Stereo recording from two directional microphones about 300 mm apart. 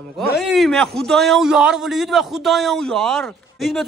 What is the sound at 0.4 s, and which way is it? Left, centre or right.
A man's voice, centre.